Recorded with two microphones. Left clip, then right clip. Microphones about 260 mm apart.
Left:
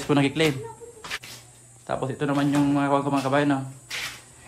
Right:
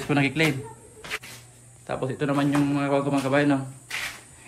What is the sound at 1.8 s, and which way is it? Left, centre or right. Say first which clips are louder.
A man's voice: even; centre.